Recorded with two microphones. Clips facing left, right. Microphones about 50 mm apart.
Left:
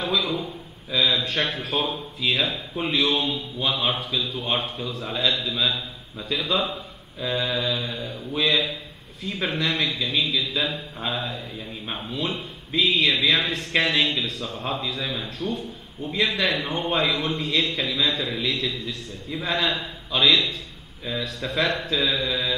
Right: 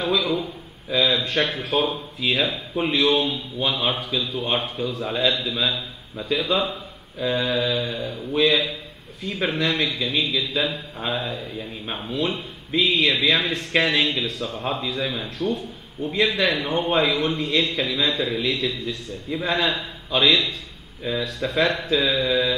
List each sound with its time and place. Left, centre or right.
0.0 s a man's voice: centre
21.0 s speech: centre
21.5 s a man's voice: centre